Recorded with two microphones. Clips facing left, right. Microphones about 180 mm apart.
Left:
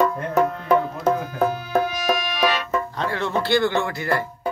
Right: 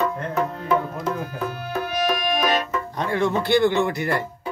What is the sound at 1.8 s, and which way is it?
Music, 60° right (ahead or behind).